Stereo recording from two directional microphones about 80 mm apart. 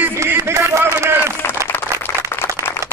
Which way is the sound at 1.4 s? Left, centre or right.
Left.